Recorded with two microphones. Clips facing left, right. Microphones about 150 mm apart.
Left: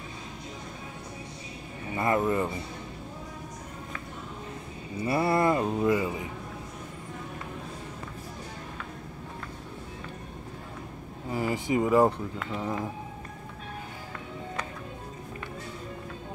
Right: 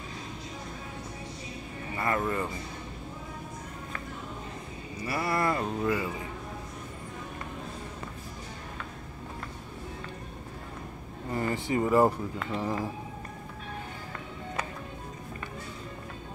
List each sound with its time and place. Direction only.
2.0 s speech: 20° left (ahead or behind)
4.9 s speech: 25° left (ahead or behind)
11.2 s a sound: 5° left (ahead or behind)
11.9 s speech: centre (ahead or behind)